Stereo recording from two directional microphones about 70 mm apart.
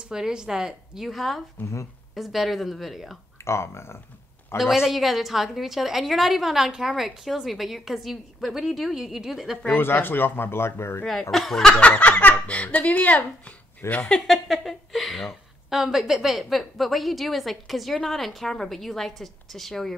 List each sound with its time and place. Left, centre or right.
0.1 s speech: centre
1.6 s a woman's voice: left
2.1 s speech: centre
3.4 s speech: left
4.6 s speech: centre
9.8 s speech: left
11.1 s speech: centre
11.9 s a woman's voice: left
14.0 s speech: centre